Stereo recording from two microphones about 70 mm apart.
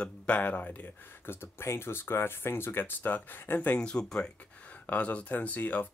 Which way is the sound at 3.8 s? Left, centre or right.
Centre.